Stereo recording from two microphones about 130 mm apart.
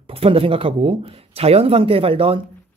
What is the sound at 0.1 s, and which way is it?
Speech, 45° right (ahead or behind).